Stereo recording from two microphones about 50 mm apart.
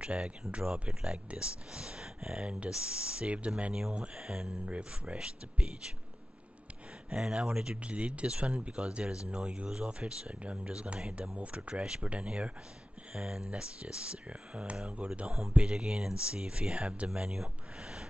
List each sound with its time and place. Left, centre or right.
0.0 s speech: centre
7.1 s speech: centre